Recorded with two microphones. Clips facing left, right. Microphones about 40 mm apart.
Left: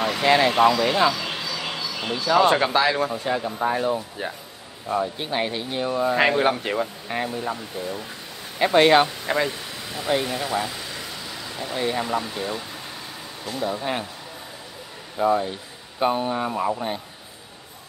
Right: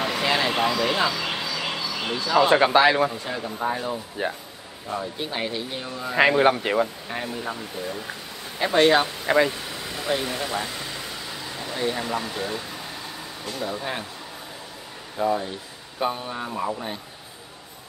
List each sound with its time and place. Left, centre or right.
0.0 s a sound: centre
0.5 s speech: centre
1.1 s a sound: centre
2.2 s speech: centre
2.5 s speech: centre
3.1 s speech: centre
6.1 s speech: centre
8.5 s speech: centre
9.2 s speech: centre
10.4 s vehicle: centre
12.3 s speech: centre
13.5 s speech: centre
15.2 s speech: centre
16.0 s speech: left